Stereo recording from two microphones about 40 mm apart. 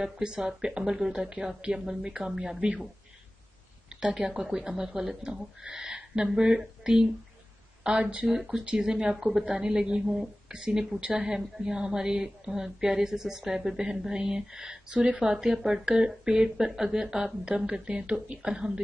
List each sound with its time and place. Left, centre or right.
0.0 s a woman's voice: centre
4.1 s a woman's voice: centre
8.3 s a woman's voice: centre; by 18.7 s right